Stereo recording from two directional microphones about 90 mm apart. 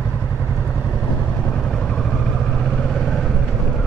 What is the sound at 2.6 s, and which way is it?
Vehicle, 5° left (ahead or behind).